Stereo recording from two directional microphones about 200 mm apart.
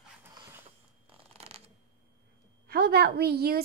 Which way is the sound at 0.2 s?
20° right (ahead or behind).